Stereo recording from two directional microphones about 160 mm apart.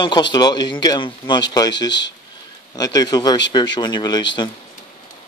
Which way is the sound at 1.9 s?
90° left.